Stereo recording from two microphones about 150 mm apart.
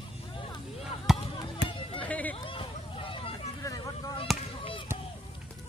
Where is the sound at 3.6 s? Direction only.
20° left (ahead or behind).